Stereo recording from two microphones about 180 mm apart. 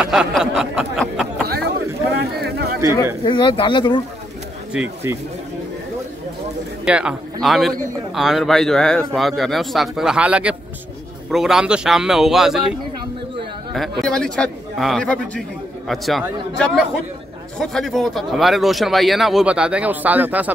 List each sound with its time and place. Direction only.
0.0 s a sound: 5° right (ahead or behind)
2.1 s a sound: 60° right (ahead or behind)
3.3 s speech: 25° left (ahead or behind)
4.7 s speech: 5° right (ahead or behind)
6.8 s a man's voice: 5° right (ahead or behind)
13.7 s speech: centre (ahead or behind)